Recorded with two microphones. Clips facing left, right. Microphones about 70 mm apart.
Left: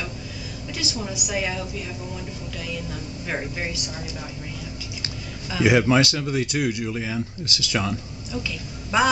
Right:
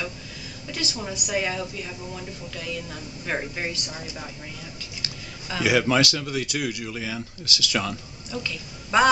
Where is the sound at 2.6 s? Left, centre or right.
Centre.